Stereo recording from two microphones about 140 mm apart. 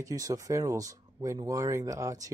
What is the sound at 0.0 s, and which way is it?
Speech, 25° right (ahead or behind).